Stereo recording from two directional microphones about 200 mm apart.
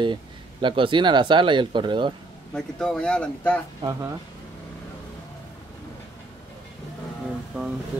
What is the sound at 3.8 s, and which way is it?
Speech, 15° right (ahead or behind).